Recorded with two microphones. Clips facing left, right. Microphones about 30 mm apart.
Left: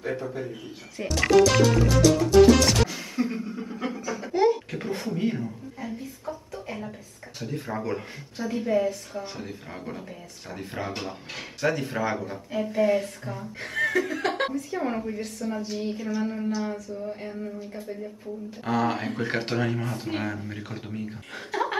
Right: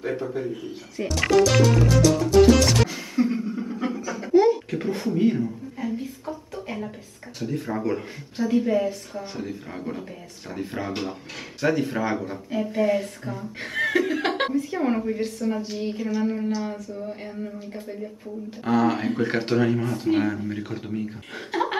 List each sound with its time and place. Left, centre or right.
0.2 s speech: centre
2.0 s music: centre
5.9 s a sound: centre
7.3 s speech: centre
13.6 s chuckle: centre
15.2 s speech: centre
18.6 s speech: centre
21.5 s chuckle: right